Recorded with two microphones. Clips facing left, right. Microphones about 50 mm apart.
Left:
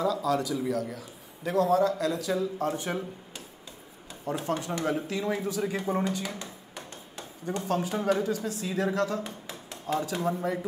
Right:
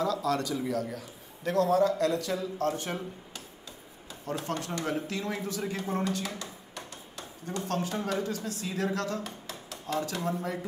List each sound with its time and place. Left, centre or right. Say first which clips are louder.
0.0 s a man's voice: left 2 dB; centre